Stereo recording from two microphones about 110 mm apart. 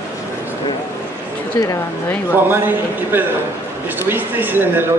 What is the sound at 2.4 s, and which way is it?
A man's voice, 20° right (ahead or behind).